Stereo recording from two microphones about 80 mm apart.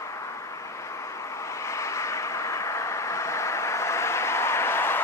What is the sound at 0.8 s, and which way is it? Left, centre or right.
Vehicle, left.